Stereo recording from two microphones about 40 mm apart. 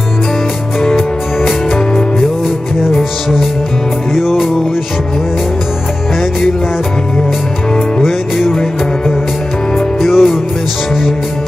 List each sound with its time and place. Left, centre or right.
2.8 s music: centre
8.0 s music: centre
10.0 s music: centre